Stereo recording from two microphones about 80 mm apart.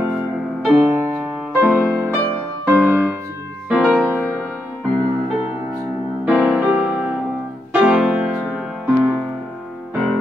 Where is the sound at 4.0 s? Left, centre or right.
Left.